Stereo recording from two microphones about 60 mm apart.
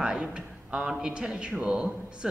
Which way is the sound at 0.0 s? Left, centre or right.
Centre.